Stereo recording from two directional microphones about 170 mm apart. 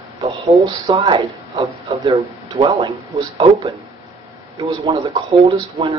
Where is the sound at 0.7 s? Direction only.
25° right (ahead or behind).